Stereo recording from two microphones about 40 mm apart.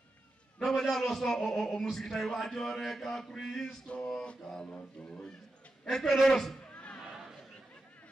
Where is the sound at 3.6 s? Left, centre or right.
Left.